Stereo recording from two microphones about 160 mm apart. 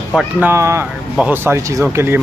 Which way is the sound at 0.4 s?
15° right (ahead or behind).